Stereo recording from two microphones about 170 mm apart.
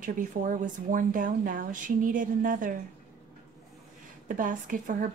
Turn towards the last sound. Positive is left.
turn(degrees=-50)  # may be behind; listen again after turning